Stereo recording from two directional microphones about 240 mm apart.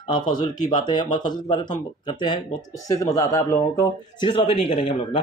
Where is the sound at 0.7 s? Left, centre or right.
Centre.